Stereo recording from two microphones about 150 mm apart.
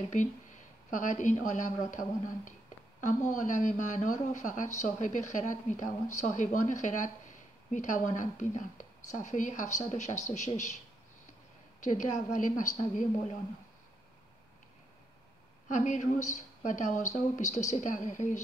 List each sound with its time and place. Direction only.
0.8 s a woman's voice: 55° left (ahead or behind)
11.8 s speech: 55° left (ahead or behind)
15.7 s a woman's voice: 55° left (ahead or behind)